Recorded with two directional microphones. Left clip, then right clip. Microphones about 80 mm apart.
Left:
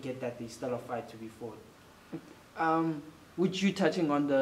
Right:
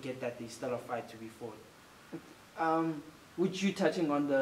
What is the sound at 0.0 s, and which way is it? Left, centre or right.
Speech, centre.